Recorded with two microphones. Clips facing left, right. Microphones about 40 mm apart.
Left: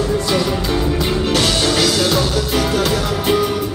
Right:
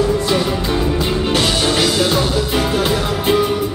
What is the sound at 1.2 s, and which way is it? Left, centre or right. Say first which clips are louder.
Music: even; right.